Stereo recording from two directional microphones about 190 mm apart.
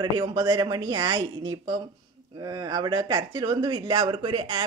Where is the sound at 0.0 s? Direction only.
20° right (ahead or behind).